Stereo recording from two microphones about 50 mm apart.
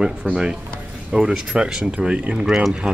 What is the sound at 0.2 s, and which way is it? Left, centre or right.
Speech, centre.